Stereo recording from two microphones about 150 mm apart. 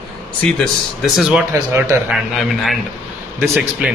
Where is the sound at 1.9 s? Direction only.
15° right (ahead or behind).